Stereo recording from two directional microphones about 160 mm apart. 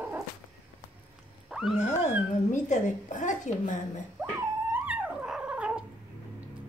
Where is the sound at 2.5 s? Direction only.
50° left (ahead or behind).